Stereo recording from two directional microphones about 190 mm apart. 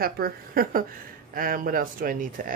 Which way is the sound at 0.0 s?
50° right (ahead or behind).